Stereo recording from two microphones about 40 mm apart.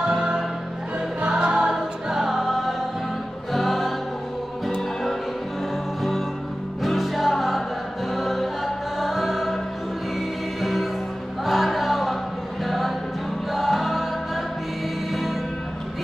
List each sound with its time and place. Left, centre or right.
0.0 s music: centre
1.7 s choir: centre
3.5 s music: centre
6.8 s music: centre
10.6 s music: centre